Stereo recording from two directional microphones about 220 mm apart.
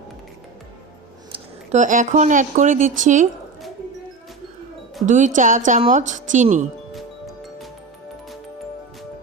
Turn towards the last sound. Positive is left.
turn(degrees=0)  # may be behind; listen again after turning